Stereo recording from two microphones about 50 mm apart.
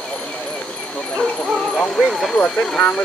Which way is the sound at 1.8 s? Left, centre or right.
Centre.